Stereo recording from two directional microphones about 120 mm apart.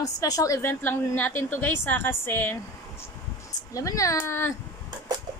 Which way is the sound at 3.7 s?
25° left (ahead or behind).